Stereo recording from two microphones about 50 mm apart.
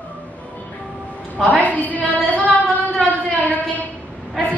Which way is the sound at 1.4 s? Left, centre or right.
Left.